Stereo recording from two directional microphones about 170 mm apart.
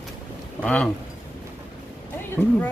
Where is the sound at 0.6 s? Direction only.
5° left (ahead or behind).